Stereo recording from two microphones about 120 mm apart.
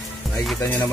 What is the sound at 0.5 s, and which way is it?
Music, 15° left (ahead or behind).